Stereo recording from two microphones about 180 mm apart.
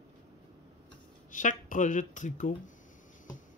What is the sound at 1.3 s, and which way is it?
Speech, 45° left (ahead or behind).